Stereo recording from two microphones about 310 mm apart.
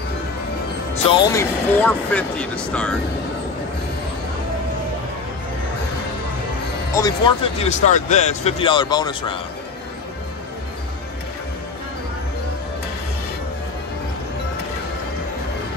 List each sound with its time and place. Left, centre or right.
1.2 s speech: centre
7.0 s speech: centre